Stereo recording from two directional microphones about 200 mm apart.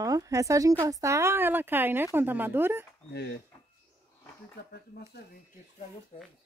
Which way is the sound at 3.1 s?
55° left (ahead or behind).